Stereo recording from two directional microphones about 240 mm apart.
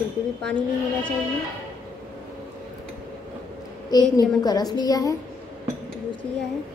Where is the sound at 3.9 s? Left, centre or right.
Centre.